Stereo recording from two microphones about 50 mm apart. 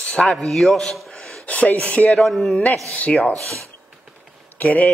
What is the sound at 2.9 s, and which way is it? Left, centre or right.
Speech, left.